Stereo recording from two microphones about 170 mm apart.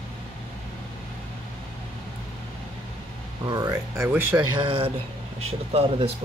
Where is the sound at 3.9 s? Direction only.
10° right (ahead or behind).